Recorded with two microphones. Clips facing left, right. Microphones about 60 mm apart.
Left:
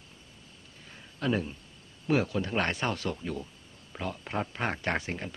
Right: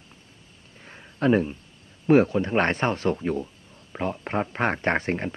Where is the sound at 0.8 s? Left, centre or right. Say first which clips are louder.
Right 9 dB; right.